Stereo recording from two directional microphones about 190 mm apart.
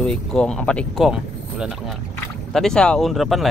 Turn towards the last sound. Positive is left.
turn(degrees=0)  # may be behind; listen again after turning